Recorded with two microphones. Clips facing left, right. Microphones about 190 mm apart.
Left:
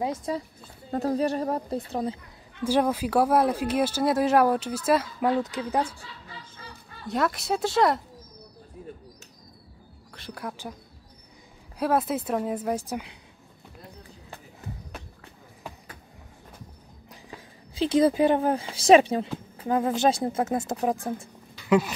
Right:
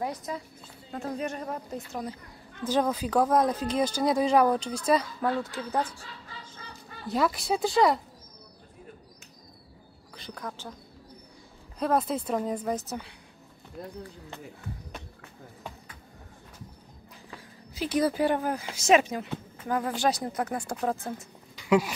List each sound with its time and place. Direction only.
0.0 s a woman's voice: 25° left (ahead or behind)
2.6 s speech: 10° left (ahead or behind)
7.1 s speech: centre (ahead or behind)
10.1 s speech: 5° left (ahead or behind)
11.8 s speech: 5° left (ahead or behind)
17.7 s speech: 25° left (ahead or behind)
21.5 s a sound: 10° right (ahead or behind)